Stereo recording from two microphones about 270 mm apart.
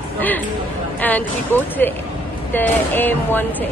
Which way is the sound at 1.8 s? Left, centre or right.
Centre.